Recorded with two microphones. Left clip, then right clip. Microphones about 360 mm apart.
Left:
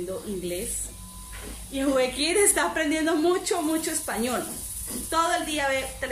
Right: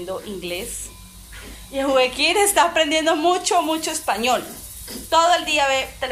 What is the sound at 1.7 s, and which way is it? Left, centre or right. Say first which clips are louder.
A woman's voice: right 6 dB; centre.